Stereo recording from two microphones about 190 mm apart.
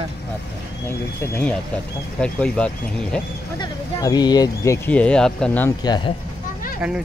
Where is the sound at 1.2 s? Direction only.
10° left (ahead or behind).